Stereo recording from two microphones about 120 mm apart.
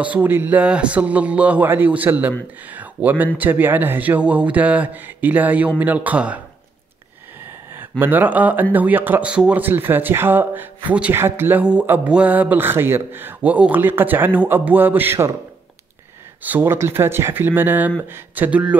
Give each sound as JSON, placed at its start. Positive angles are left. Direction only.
{"t": 0.0, "sound": "speech", "side_deg": -15}
{"t": 8.0, "sound": "speech", "side_deg": -15}
{"t": 16.4, "sound": "speech", "side_deg": -15}